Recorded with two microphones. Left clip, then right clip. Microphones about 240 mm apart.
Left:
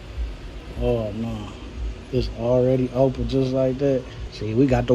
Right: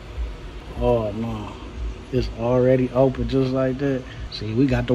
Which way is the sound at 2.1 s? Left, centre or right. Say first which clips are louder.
Even; centre.